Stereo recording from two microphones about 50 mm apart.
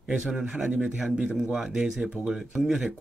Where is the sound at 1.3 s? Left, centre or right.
Centre.